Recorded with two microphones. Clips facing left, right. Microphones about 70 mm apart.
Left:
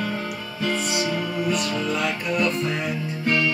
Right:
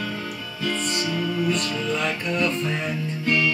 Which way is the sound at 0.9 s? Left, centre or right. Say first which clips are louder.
Left 1 dB; centre.